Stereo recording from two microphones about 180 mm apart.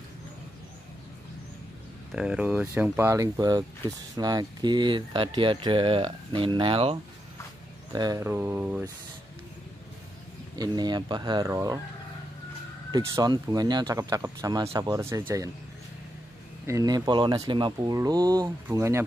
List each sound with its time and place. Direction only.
2.1 s speech: 5° right (ahead or behind); by 7.0 s 30° right (ahead or behind)
7.9 s speech: 20° right (ahead or behind)
10.6 s speech: 25° right (ahead or behind)
12.9 s speech: 20° right (ahead or behind)
16.6 s speech: 20° right (ahead or behind)